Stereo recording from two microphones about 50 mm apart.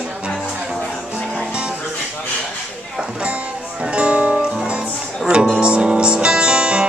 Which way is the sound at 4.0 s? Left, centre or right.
Right.